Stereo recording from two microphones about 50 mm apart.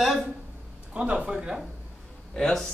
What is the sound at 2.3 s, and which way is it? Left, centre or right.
Speech, centre.